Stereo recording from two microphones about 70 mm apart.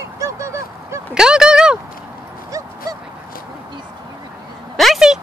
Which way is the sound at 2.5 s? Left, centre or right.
Right.